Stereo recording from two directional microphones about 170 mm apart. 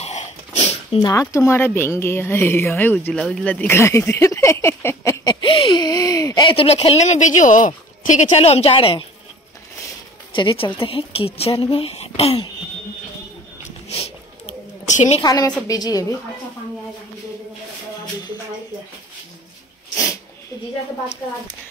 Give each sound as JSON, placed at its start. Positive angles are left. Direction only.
{"t": 0.0, "sound": "dog", "side_deg": 40}
{"t": 0.9, "sound": "a woman's voice", "side_deg": 20}
{"t": 10.3, "sound": "speech", "side_deg": 30}
{"t": 13.8, "sound": "a sound", "side_deg": 35}
{"t": 15.2, "sound": "a woman's voice", "side_deg": 20}